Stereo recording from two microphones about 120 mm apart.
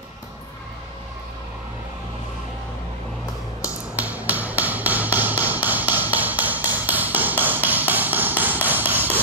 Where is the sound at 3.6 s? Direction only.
10° right (ahead or behind).